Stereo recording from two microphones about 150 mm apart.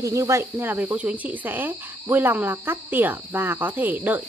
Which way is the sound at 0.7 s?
10° right (ahead or behind).